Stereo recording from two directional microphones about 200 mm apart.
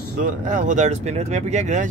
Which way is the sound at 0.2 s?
40° right (ahead or behind).